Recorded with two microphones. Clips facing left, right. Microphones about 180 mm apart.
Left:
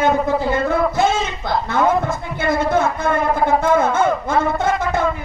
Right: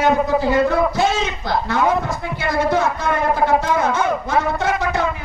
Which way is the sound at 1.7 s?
50° left (ahead or behind).